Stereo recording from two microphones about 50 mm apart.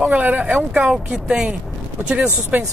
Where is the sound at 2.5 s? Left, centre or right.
Right.